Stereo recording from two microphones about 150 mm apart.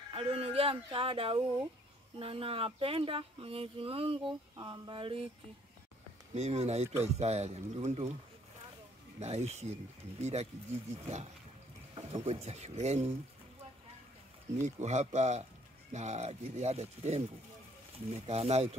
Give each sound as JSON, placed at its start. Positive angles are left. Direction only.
{"t": 0.1, "sound": "speech", "side_deg": -40}
{"t": 6.3, "sound": "speech", "side_deg": -45}
{"t": 9.2, "sound": "speech", "side_deg": -45}
{"t": 11.9, "sound": "speech", "side_deg": -40}
{"t": 14.8, "sound": "speech", "side_deg": -50}